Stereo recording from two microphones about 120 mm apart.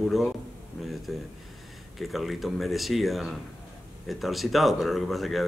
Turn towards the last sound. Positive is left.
turn(degrees=0)  # may be behind; listen again after turning